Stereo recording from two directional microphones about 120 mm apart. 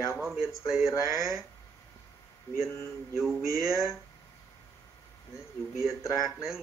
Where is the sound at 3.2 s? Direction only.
5° right (ahead or behind).